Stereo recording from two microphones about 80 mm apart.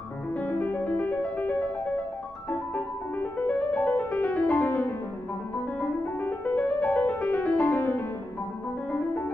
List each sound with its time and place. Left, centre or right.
0.4 s music: left
2.7 s music: left